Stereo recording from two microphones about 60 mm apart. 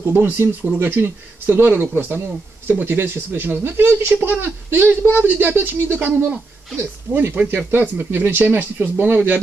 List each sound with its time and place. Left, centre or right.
0.0 s speech: right
7.4 s speech: right
7.7 s speech: right